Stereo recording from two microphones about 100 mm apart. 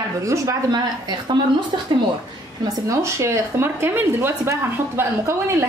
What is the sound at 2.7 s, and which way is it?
Speech, 30° right (ahead or behind).